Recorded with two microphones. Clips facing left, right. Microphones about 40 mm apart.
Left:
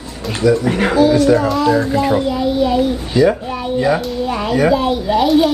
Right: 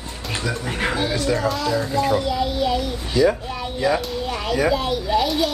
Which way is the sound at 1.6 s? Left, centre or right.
Left.